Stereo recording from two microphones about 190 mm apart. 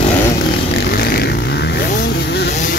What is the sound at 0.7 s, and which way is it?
Vehicle, 55° left (ahead or behind).